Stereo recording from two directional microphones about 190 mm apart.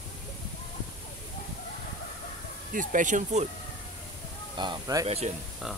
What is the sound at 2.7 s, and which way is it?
Speech, 40° right (ahead or behind).